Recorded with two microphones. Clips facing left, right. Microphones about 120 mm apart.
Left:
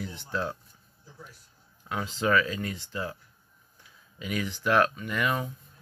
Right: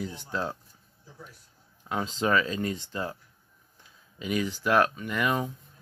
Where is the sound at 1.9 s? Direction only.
25° right (ahead or behind).